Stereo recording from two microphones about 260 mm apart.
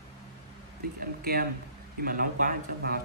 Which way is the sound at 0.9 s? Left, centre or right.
Right.